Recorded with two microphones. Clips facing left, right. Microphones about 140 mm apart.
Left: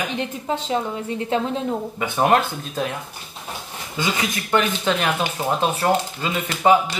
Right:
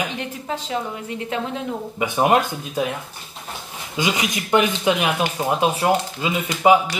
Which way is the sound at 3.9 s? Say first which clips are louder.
Right 2 dB; 15° right (ahead or behind).